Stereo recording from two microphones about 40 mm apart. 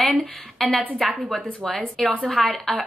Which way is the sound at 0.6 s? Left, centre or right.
Centre.